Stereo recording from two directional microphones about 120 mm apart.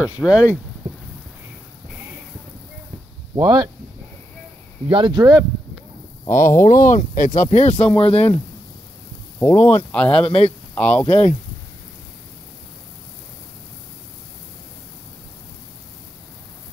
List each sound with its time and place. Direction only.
0.0 s speech: 10° right (ahead or behind)
3.3 s speech: 30° right (ahead or behind)
4.8 s speech: 45° right (ahead or behind)
6.2 s speech: 20° left (ahead or behind)
6.6 s speech: 90° left
7.7 s speech: 15° left (ahead or behind)
8.0 s speech: 55° left (ahead or behind)
9.6 s speech: 70° left (ahead or behind)
9.9 s speech: 10° left (ahead or behind)
10.2 s speech: 55° left (ahead or behind)
10.7 s speech: 15° left (ahead or behind)
11.1 s speech: 60° left (ahead or behind)